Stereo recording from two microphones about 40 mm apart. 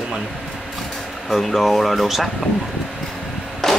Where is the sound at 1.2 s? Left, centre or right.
Centre.